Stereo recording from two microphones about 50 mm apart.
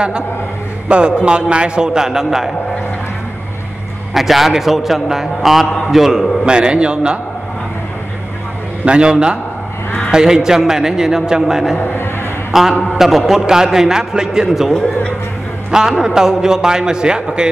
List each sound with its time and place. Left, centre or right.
0.8 s a man's voice: centre
4.1 s a man's voice: centre
6.4 s a man's voice: centre
8.8 s a man's voice: centre
11.8 s a sound: left
12.9 s a man's voice: centre
15.7 s a man's voice: centre